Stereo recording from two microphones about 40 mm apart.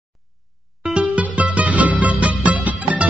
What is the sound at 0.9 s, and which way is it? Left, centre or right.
Music, right.